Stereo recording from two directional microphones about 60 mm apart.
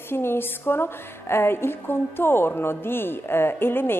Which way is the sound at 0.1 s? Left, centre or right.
Left.